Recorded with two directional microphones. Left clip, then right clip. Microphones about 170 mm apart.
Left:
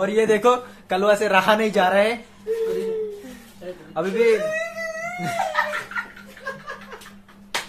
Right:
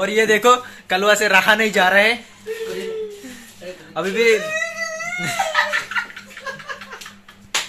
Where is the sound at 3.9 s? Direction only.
20° right (ahead or behind).